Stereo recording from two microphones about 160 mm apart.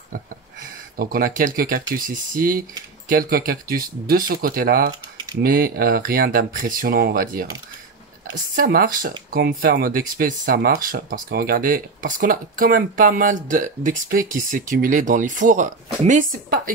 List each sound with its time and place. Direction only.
0.9 s speech: 70° right (ahead or behind)
8.5 s speech: 70° right (ahead or behind)